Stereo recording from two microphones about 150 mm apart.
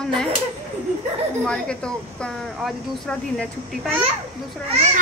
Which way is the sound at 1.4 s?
5° left (ahead or behind).